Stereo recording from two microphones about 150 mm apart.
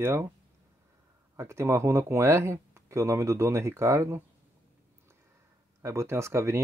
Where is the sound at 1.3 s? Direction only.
20° right (ahead or behind).